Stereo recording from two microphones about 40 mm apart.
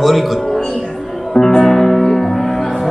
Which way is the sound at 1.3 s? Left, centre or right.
Centre.